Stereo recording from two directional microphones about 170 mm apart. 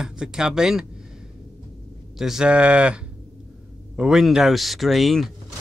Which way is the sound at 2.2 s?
5° right (ahead or behind).